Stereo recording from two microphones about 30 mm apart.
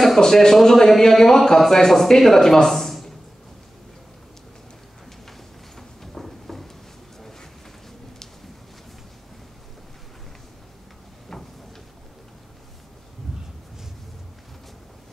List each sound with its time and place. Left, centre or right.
0.2 s speech: centre
5.8 s a sound: centre
7.2 s vehicle: centre